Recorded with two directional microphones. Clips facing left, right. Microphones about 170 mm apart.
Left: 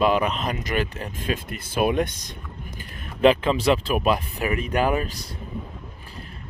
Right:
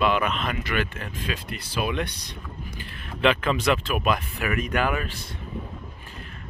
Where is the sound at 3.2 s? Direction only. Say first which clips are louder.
Left 4 dB; 35° left (ahead or behind).